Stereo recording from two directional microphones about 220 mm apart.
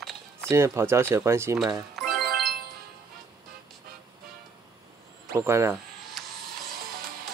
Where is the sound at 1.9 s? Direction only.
Centre (ahead or behind).